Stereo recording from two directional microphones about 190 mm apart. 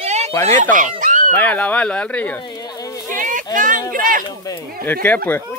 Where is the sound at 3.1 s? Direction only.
45° right (ahead or behind).